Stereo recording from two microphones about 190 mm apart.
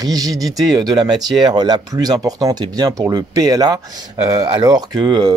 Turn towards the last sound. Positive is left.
turn(degrees=-20)  # may be behind; listen again after turning